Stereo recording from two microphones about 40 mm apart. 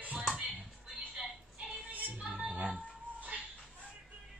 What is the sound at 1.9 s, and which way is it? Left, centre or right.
Music, right.